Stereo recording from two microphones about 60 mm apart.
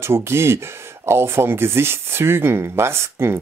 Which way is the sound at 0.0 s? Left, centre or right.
Right.